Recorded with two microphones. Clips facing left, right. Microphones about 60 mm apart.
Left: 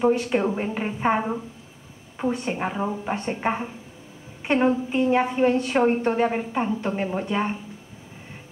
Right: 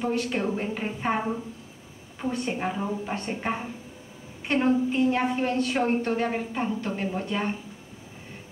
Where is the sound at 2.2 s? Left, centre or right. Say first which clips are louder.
Left 3 dB; centre.